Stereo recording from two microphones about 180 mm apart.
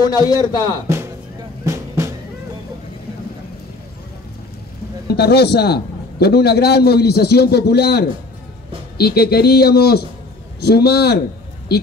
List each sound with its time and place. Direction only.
0.0 s a man's voice: 20° left (ahead or behind)
1.6 s music: 15° right (ahead or behind)
5.1 s a man's voice: 65° left (ahead or behind)